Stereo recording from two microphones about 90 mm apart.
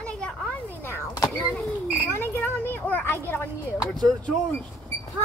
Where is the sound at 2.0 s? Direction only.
25° left (ahead or behind).